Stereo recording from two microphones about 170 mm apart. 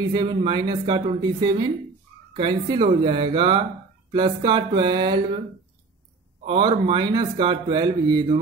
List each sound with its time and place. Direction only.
0.1 s speech: 25° right (ahead or behind)
6.4 s speech: 30° right (ahead or behind)